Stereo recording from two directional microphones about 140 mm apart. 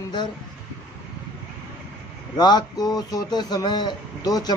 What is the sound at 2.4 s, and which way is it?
Speech, 30° left (ahead or behind).